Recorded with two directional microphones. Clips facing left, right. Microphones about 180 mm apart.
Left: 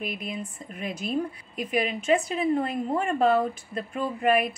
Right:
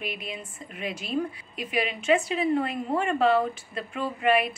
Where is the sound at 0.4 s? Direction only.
40° left (ahead or behind).